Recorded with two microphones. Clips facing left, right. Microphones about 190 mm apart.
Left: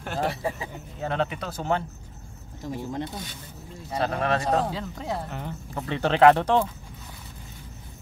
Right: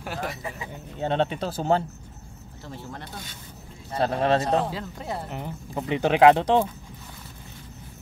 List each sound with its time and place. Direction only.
0.2 s speech: 30° left (ahead or behind)
1.0 s speech: 30° right (ahead or behind)
2.6 s speech: 15° left (ahead or behind)
4.0 s speech: 30° right (ahead or behind)
4.6 s speech: 5° right (ahead or behind)
5.3 s speech: 15° right (ahead or behind)